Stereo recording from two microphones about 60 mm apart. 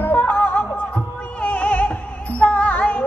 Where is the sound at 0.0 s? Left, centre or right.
Left.